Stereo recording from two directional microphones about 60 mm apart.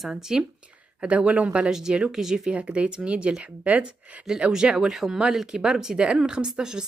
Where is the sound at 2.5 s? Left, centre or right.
Right.